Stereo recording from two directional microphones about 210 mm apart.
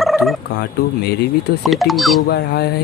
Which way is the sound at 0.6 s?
50° left (ahead or behind).